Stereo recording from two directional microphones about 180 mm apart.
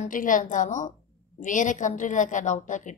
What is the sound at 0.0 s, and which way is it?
A woman's voice, 45° left (ahead or behind).